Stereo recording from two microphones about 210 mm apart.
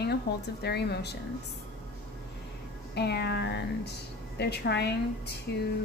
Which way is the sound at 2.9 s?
50° left (ahead or behind).